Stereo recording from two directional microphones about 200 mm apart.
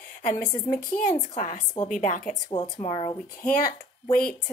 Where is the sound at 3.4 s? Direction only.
45° left (ahead or behind).